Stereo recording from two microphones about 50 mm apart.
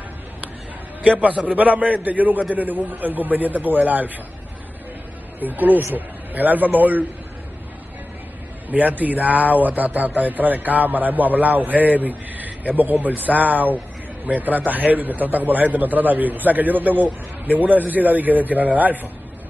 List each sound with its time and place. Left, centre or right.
1.0 s a man's voice: right
5.4 s a man's voice: right
8.6 s a man's voice: right